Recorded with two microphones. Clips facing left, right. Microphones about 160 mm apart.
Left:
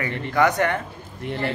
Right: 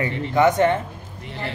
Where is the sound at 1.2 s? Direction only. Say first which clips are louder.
Left 6 dB; 55° left (ahead or behind).